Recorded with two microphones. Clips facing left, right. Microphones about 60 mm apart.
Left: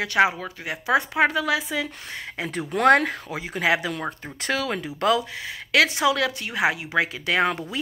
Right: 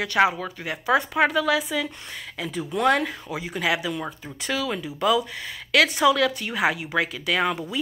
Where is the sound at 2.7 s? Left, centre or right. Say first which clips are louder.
Left 4 dB; left.